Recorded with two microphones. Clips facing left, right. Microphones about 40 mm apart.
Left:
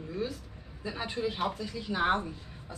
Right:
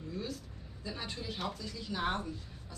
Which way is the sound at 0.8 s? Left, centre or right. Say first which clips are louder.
Left 8 dB; left.